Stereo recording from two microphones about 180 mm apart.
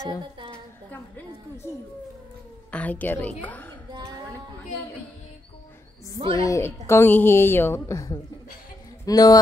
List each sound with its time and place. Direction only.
0.9 s a woman's voice: 15° left (ahead or behind)
2.7 s a woman's voice: 10° left (ahead or behind)
6.3 s a woman's voice: 20° left (ahead or behind)